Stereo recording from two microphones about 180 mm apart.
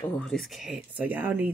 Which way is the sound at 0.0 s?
5° left (ahead or behind).